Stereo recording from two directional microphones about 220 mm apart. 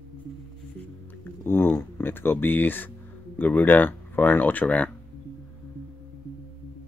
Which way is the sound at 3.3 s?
10° left (ahead or behind).